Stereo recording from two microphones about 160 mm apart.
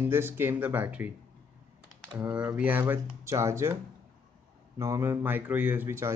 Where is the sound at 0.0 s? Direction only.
15° right (ahead or behind).